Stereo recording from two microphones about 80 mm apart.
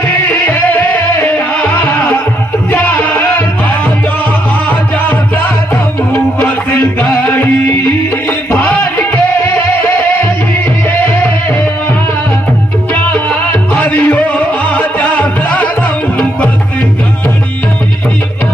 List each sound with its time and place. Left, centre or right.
0.5 s music: left
2.7 s a sound: left
3.1 s music: left
6.7 s music: left
8.5 s music: left
13.5 s music: left